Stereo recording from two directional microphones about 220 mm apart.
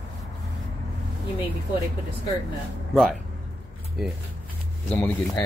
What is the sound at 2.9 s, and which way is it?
Speech, centre (ahead or behind).